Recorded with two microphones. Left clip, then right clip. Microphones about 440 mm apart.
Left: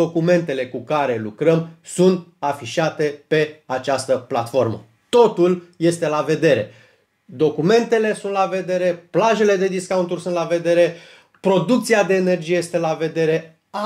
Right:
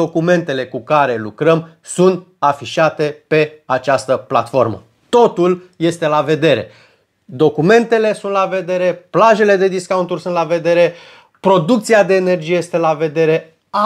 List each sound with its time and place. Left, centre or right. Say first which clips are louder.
0.0 s speech: right 3 dB; right